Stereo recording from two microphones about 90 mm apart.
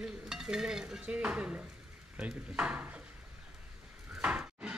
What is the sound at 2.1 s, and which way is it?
Speech, 15° right (ahead or behind).